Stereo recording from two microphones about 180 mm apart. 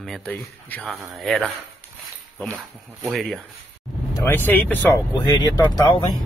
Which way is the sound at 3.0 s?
Centre (ahead or behind).